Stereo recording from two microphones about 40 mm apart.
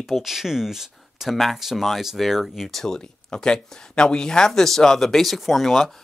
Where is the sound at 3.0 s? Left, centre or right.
Left; by 5.9 s centre.